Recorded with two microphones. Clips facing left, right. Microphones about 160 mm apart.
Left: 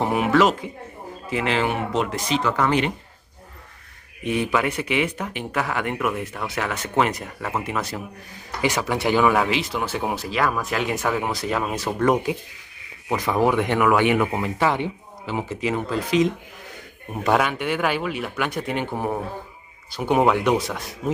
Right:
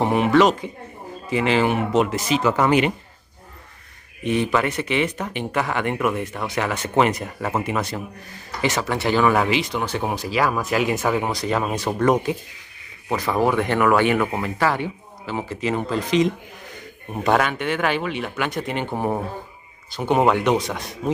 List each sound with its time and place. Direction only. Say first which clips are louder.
0.0 s speech: right 2 dB; 5° left (ahead or behind)
4.2 s speech: right 2 dB; 10° left (ahead or behind)
9.3 s speech: right 1 dB; centre (ahead or behind)
13.4 s speech: even; 15° left (ahead or behind)
15.9 s speech: right 1 dB; 5° left (ahead or behind)
17.3 s speech: right 1 dB; 5° left (ahead or behind)
19.9 s speech: right 1 dB; 10° left (ahead or behind)